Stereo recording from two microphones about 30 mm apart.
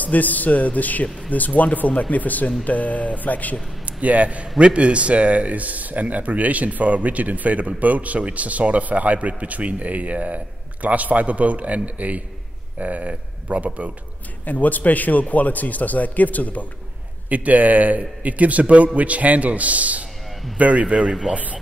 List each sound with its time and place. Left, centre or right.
0.0 s a man's voice: left
4.0 s a man's voice: right
14.4 s a man's voice: left
17.3 s a man's voice: right